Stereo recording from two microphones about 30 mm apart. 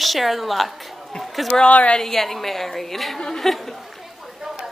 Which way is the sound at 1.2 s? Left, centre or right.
Centre.